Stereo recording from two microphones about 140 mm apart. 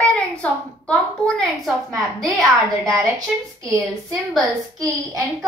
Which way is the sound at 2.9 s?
25° right (ahead or behind).